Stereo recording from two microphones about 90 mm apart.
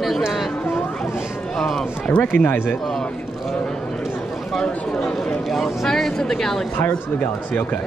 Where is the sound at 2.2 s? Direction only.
20° left (ahead or behind).